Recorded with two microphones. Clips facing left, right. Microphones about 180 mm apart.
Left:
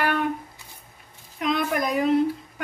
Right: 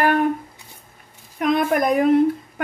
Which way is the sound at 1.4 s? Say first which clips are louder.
Right 6 dB; 50° right (ahead or behind).